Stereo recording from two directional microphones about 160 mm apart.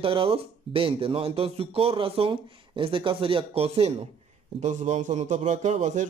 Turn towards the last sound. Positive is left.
turn(degrees=-50)  # may be behind; listen again after turning